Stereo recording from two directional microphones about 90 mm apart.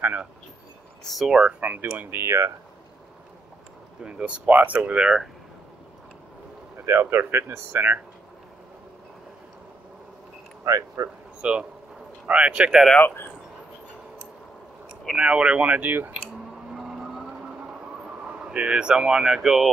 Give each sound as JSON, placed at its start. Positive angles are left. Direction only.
{"t": 0.0, "sound": "speech", "side_deg": -20}
{"t": 1.0, "sound": "speech", "side_deg": 0}
{"t": 1.3, "sound": "speech", "side_deg": -15}
{"t": 2.0, "sound": "speech", "side_deg": -30}
{"t": 4.0, "sound": "speech", "side_deg": -10}
{"t": 6.9, "sound": "speech", "side_deg": -25}
{"t": 10.6, "sound": "speech", "side_deg": -40}
{"t": 11.4, "sound": "speech", "side_deg": -10}
{"t": 13.0, "sound": "speech", "side_deg": 25}
{"t": 15.1, "sound": "speech", "side_deg": -10}
{"t": 16.7, "sound": "vehicle", "side_deg": -5}
{"t": 18.5, "sound": "speech", "side_deg": -10}